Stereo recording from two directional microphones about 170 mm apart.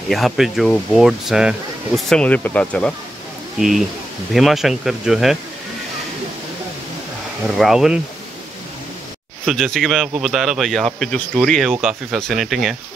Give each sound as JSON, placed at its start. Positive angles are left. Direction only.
{"t": 0.1, "sound": "speech", "side_deg": 0}
{"t": 7.4, "sound": "speech", "side_deg": 0}
{"t": 9.5, "sound": "speech", "side_deg": 0}